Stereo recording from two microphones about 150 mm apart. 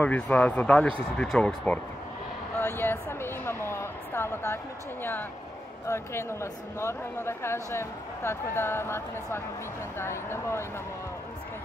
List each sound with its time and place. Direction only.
0.0 s speech: 10° left (ahead or behind)
2.6 s a sound: 15° left (ahead or behind)
5.9 s speech: 20° left (ahead or behind)